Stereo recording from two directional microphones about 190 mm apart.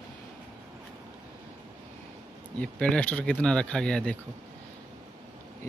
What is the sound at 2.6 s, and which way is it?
Speech, 5° left (ahead or behind).